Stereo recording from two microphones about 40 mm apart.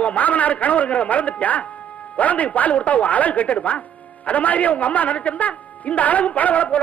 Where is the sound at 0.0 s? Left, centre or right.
Left.